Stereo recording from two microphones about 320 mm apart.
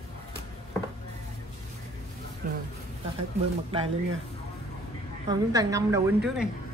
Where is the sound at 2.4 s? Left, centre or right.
Right.